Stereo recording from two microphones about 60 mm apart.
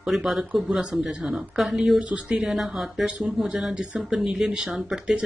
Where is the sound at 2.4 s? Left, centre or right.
Centre.